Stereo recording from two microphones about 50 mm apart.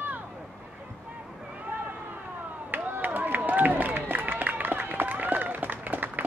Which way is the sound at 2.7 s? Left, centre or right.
Right.